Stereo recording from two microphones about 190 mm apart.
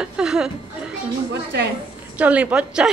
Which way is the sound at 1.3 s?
60° right (ahead or behind).